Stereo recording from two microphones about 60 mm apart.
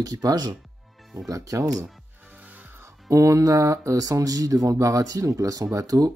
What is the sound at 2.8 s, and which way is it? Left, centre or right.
Speech, right.